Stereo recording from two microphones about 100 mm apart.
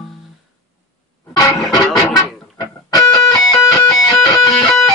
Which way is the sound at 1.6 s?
40° left (ahead or behind).